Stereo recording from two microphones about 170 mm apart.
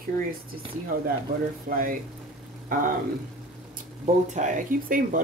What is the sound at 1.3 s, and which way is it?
Speech, 60° right (ahead or behind).